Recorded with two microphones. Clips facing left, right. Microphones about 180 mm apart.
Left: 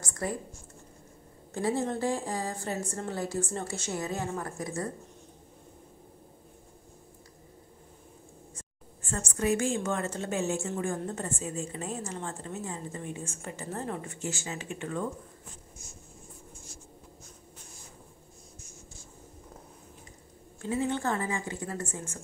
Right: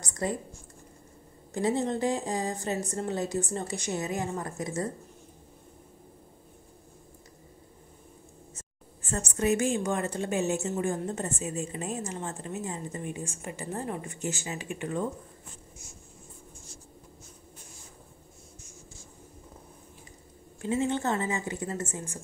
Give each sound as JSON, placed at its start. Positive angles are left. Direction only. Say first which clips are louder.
{"t": 0.0, "sound": "a sound", "louder": "right 2 dB", "side_deg": -20}
{"t": 1.5, "sound": "a woman's voice", "louder": "right 2 dB", "side_deg": -20}
{"t": 8.5, "sound": "a woman's voice", "louder": "left 1 dB", "side_deg": -20}
{"t": 20.6, "sound": "a woman's voice", "louder": "right 2 dB", "side_deg": -20}